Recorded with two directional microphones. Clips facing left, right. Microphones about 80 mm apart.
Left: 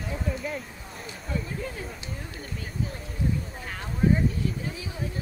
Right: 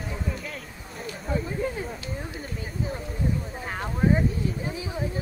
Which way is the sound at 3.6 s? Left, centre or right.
Right.